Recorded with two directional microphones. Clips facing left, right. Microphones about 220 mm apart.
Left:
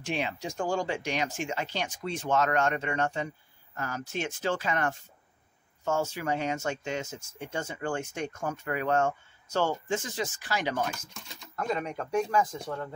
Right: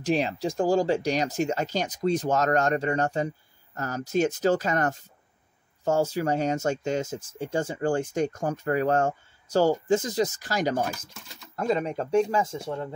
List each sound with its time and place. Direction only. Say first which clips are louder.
0.0 s speech: right 7 dB; 40° right (ahead or behind)
11.1 s speech: even; centre (ahead or behind)
11.5 s speech: right 6 dB; 30° right (ahead or behind)